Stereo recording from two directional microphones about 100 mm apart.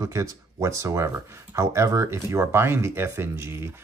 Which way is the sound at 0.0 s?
35° right (ahead or behind).